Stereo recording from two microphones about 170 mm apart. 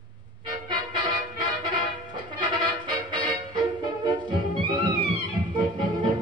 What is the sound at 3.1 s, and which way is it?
Music, 30° right (ahead or behind).